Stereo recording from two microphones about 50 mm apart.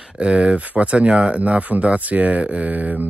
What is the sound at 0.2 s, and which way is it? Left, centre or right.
Speech, right.